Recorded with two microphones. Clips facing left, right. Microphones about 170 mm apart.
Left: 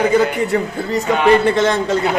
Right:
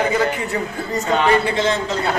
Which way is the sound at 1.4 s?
50° left (ahead or behind).